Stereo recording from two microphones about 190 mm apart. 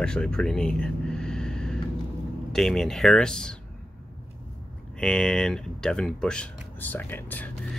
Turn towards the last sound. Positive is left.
turn(degrees=10)  # may be behind; listen again after turning